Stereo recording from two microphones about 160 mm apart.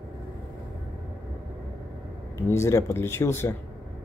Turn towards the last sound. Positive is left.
turn(degrees=15)  # may be behind; listen again after turning